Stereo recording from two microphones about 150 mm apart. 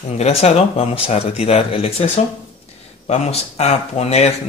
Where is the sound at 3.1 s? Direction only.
45° left (ahead or behind).